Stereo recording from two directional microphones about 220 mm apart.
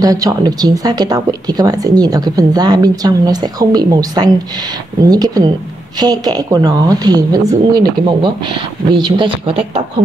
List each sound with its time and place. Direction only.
0.0 s speech: 15° right (ahead or behind)